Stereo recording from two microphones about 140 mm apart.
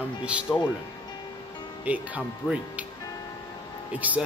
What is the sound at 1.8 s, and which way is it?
Speech, 10° right (ahead or behind).